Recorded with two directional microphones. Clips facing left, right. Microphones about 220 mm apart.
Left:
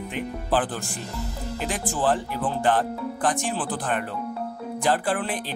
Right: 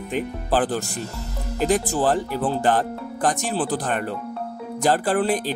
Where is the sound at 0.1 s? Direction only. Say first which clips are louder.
Right 3 dB; 40° right (ahead or behind).